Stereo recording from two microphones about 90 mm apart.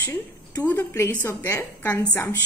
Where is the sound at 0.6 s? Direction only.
25° left (ahead or behind).